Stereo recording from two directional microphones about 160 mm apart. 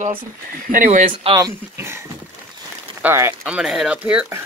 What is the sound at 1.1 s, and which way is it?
Speech, 30° right (ahead or behind).